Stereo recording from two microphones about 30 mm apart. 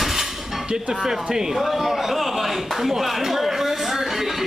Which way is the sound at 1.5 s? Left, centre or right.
Centre.